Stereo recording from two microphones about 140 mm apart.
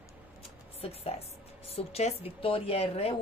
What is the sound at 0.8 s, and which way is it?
A woman's voice, 45° left (ahead or behind).